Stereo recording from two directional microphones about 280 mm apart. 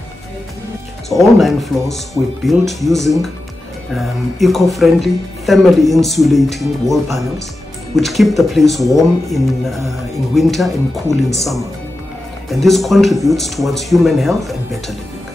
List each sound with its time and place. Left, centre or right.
1.4 s speech: centre